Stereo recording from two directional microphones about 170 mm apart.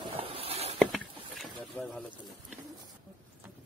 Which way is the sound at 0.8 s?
Centre (ahead or behind).